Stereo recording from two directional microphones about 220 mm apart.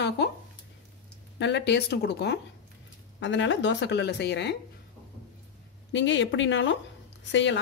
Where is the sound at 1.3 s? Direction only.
50° left (ahead or behind).